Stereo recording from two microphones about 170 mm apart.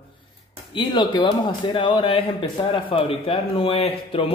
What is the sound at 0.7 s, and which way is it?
A man's voice, 25° left (ahead or behind).